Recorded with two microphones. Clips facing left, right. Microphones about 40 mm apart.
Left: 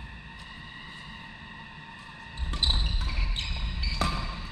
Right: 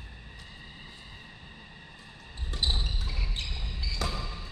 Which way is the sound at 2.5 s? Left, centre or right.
Left.